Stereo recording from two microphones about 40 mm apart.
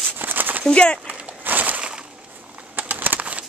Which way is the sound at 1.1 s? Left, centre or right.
Right.